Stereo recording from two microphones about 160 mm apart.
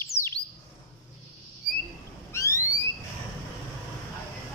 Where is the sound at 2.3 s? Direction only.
20° left (ahead or behind).